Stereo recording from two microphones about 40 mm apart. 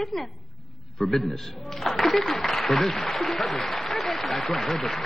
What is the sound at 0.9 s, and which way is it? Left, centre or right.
A man's voice, centre.